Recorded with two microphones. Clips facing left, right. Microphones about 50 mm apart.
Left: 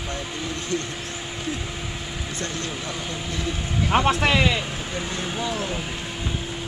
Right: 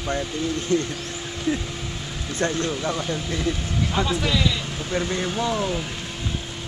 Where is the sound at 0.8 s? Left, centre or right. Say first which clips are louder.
Right 1 dB; centre.